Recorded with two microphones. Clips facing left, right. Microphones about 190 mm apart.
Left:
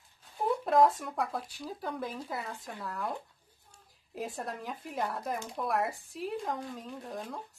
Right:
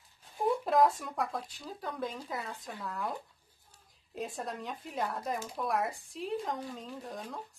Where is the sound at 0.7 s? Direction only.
Centre (ahead or behind).